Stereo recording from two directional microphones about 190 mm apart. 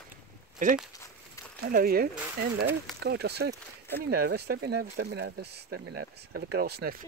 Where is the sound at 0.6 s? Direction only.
40° right (ahead or behind).